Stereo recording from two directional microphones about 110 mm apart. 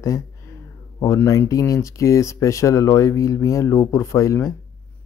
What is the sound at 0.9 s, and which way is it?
Speech, 30° left (ahead or behind).